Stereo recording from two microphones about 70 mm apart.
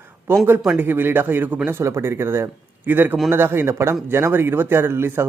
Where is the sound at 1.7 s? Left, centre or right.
Right.